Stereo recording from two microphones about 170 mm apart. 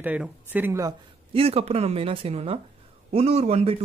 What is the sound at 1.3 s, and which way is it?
Speech, 35° right (ahead or behind).